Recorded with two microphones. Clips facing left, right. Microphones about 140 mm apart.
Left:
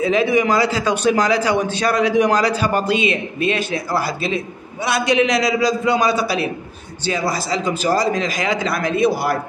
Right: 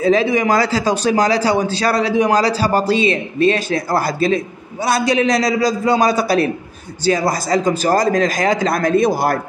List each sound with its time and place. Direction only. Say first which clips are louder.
0.0 s a man's voice: right 2 dB; 35° right (ahead or behind)